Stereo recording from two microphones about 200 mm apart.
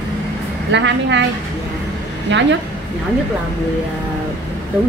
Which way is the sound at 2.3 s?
65° right (ahead or behind).